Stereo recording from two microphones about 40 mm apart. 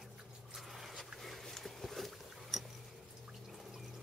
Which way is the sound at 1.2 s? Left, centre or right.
Centre.